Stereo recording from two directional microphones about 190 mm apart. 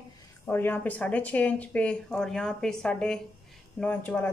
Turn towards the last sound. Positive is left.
turn(degrees=10)  # may be behind; listen again after turning